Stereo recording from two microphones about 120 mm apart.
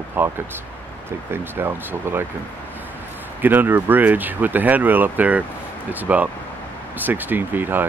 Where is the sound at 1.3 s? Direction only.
20° right (ahead or behind).